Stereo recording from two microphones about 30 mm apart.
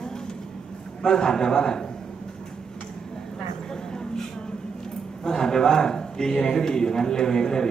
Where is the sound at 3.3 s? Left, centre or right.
Left.